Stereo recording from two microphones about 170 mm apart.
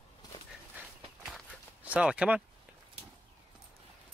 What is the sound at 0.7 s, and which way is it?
Walk, centre (ahead or behind).